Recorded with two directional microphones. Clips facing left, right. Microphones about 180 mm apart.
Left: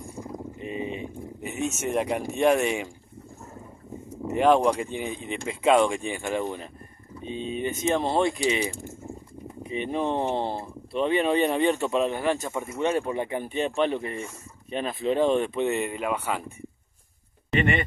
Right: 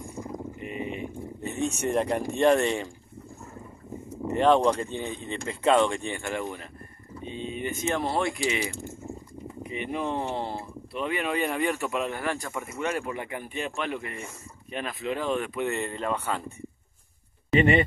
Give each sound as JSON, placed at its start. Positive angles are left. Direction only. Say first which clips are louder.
{"t": 0.6, "sound": "boat", "louder": "left 5 dB", "side_deg": 25}
{"t": 1.4, "sound": "speech", "louder": "right 1 dB", "side_deg": 5}
{"t": 4.4, "sound": "speech", "louder": "left 1 dB", "side_deg": 10}
{"t": 9.8, "sound": "speech", "louder": "left 4 dB", "side_deg": 25}